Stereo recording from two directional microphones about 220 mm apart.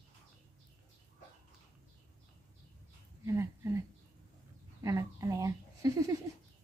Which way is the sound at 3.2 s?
15° right (ahead or behind).